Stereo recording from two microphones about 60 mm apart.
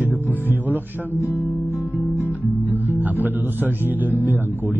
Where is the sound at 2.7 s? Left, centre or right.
Right.